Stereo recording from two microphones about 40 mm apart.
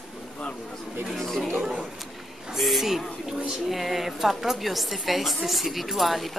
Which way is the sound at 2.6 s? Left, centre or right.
Centre.